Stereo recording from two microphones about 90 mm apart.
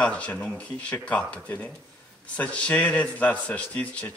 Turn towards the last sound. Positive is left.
turn(degrees=15)  # may be behind; listen again after turning